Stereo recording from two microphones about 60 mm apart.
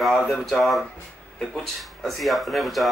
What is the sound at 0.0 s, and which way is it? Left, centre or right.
Speech, centre.